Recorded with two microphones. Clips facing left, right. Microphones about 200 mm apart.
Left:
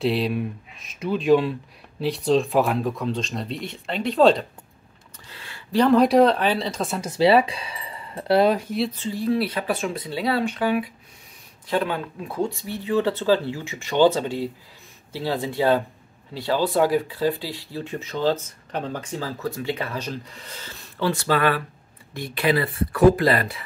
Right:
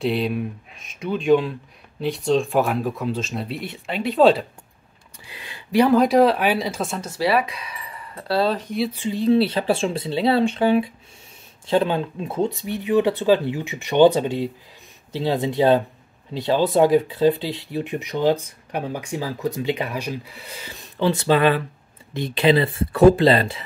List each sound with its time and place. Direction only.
0.0 s speech: centre (ahead or behind)
5.2 s a sound: 15° right (ahead or behind)
5.9 s speech: centre (ahead or behind)
7.0 s speech: 20° left (ahead or behind)
8.7 s speech: 5° right (ahead or behind)
9.0 s speech: 20° right (ahead or behind)